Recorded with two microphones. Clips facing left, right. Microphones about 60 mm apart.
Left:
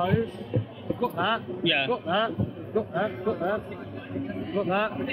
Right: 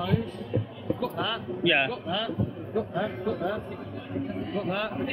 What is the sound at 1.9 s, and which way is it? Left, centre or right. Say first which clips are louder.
A man's voice: left 4 dB; left.